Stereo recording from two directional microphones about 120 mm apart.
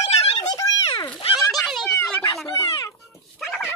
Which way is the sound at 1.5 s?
Centre (ahead or behind).